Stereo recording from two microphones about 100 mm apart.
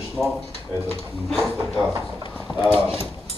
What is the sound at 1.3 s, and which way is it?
Speech, centre (ahead or behind).